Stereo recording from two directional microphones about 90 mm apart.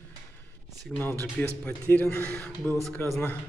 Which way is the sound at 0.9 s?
5° left (ahead or behind).